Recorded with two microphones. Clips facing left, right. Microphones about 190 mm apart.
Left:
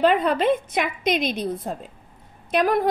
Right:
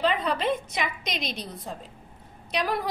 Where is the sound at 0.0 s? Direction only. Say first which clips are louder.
Left 7 dB; 55° left (ahead or behind).